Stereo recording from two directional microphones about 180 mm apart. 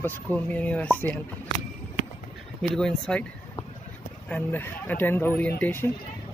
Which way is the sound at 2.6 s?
5° left (ahead or behind).